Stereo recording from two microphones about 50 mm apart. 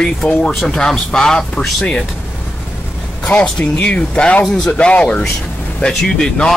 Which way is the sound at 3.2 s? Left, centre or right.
Left.